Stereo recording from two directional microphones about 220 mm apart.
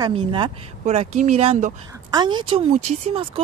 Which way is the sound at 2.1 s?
20° right (ahead or behind).